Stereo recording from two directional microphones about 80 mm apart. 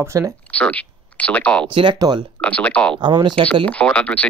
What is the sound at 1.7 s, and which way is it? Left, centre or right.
Speech, right.